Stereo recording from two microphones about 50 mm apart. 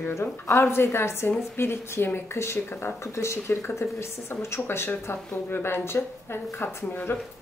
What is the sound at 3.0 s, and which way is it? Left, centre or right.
Speech, left.